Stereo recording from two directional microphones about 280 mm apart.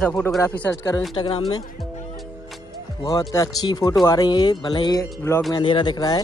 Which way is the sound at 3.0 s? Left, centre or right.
Centre.